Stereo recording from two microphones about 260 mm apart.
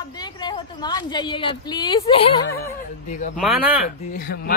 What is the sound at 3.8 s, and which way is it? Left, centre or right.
Speech, left.